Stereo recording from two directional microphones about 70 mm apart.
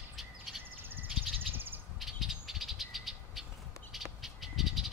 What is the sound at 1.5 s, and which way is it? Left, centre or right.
Bird, right.